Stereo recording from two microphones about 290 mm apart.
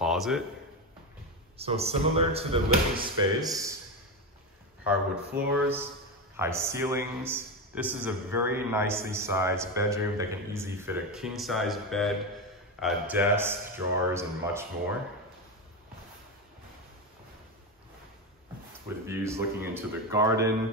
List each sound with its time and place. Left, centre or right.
0.0 s a sound: centre
1.6 s speech: right
5.4 s a man's voice: centre
19.0 s a man's voice: centre